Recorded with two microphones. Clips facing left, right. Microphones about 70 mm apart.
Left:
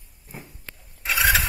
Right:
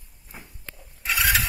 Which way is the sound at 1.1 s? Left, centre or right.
Left.